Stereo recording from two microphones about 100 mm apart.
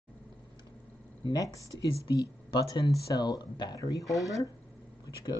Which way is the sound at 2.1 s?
40° left (ahead or behind).